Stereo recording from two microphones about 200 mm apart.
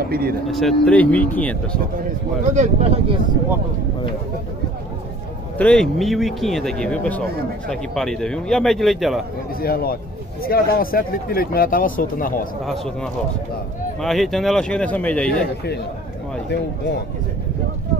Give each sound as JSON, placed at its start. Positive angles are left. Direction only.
{"t": 0.1, "sound": "speech", "side_deg": -50}
{"t": 0.5, "sound": "speech", "side_deg": 0}
{"t": 2.5, "sound": "speech", "side_deg": -30}
{"t": 5.6, "sound": "speech", "side_deg": 5}
{"t": 9.6, "sound": "speech", "side_deg": 50}
{"t": 14.0, "sound": "speech", "side_deg": 0}